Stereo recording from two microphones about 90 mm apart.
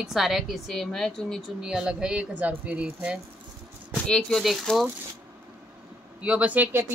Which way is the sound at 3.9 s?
10° left (ahead or behind).